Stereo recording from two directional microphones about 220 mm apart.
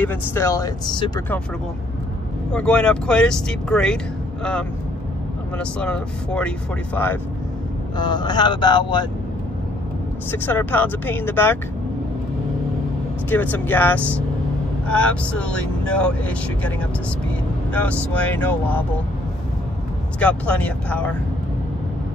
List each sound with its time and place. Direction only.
0.0 s speech: 10° left (ahead or behind)
2.5 s speech: 5° left (ahead or behind)
5.6 s speech: 5° left (ahead or behind)
8.0 s speech: 20° left (ahead or behind)
10.3 s speech: 10° left (ahead or behind)
13.3 s speech: 10° left (ahead or behind)
17.7 s speech: 5° left (ahead or behind)
20.2 s speech: 5° left (ahead or behind)